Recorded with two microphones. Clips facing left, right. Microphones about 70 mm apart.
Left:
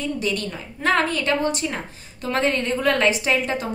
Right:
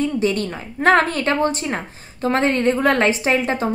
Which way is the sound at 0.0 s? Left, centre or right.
Right.